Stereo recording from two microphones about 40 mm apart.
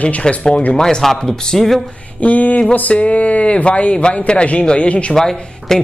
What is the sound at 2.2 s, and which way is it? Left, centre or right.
Speech, left.